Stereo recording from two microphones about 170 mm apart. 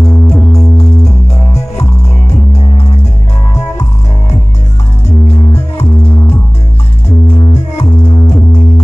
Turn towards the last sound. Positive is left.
turn(degrees=40)  # may be behind; listen again after turning